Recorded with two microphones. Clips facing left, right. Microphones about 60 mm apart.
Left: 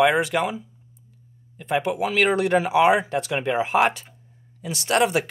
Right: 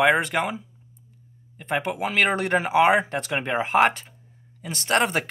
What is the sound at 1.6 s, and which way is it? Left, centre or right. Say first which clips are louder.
Speech: left 3 dB; right.